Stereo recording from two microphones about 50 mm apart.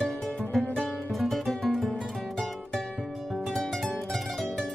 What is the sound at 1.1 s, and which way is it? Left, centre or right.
Music, centre.